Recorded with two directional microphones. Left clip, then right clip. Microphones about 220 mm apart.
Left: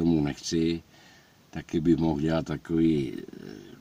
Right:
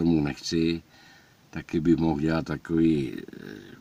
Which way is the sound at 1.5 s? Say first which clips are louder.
Right 1 dB; 5° right (ahead or behind).